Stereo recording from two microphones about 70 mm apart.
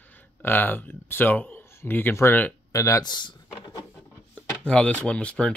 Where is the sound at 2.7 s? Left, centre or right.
Left.